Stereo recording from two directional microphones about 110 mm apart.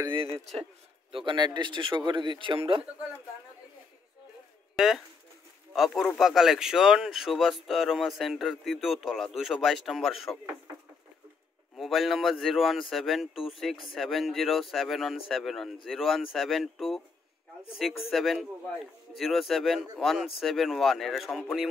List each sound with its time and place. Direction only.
0.0 s speech: 50° right (ahead or behind)
4.7 s speech: 5° right (ahead or behind)
11.7 s speech: centre (ahead or behind)